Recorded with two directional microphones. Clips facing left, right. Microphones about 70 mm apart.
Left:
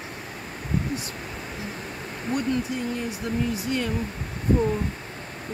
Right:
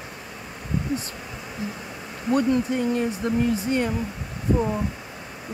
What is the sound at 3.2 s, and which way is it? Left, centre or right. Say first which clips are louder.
Speech: right 2 dB; right.